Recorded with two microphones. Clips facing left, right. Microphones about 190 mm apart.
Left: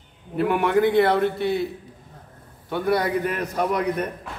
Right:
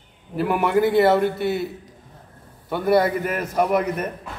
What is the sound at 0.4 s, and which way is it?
A man's voice, centre (ahead or behind).